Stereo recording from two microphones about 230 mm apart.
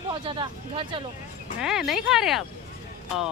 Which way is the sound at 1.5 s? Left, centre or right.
Centre.